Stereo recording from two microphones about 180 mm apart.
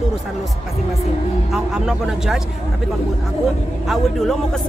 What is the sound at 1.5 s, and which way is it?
Speech, centre (ahead or behind).